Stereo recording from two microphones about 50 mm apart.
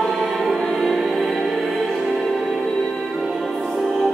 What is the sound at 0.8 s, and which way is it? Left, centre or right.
Music, centre.